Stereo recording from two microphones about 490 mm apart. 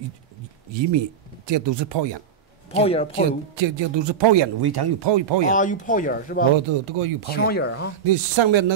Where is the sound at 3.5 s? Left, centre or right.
Right.